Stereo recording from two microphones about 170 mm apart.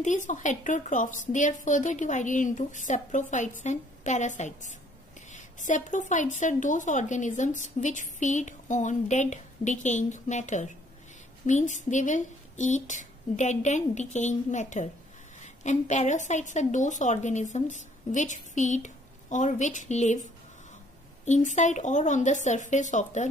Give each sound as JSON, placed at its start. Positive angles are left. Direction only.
{"t": 0.0, "sound": "a woman's voice", "side_deg": 45}
{"t": 21.3, "sound": "a woman's voice", "side_deg": 45}